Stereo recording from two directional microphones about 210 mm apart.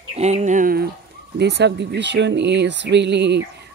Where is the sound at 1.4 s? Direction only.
55° right (ahead or behind).